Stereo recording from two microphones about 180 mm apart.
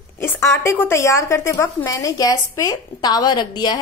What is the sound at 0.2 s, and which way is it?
A woman's voice, 15° left (ahead or behind).